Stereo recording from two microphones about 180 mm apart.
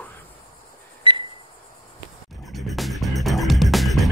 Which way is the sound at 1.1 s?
30° right (ahead or behind).